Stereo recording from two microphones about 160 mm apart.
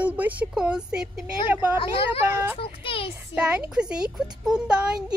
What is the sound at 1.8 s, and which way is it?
Speech, 35° left (ahead or behind).